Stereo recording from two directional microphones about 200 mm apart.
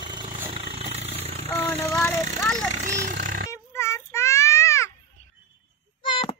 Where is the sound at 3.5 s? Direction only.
15° left (ahead or behind).